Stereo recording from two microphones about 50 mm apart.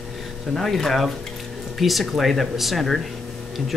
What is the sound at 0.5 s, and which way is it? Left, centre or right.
Speech, centre.